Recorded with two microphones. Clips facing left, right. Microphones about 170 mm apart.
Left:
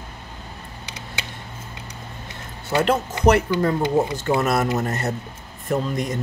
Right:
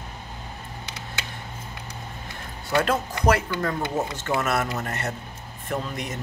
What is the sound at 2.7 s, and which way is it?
Speech, 25° left (ahead or behind).